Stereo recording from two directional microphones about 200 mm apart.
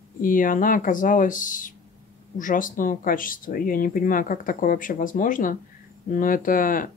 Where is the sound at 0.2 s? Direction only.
40° left (ahead or behind).